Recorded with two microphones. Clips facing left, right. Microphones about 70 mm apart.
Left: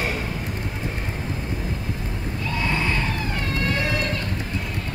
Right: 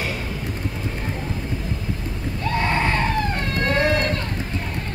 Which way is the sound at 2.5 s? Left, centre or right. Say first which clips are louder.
Right 4 dB; right.